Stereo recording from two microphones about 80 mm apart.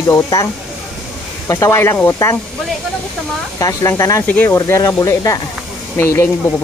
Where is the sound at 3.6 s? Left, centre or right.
Left.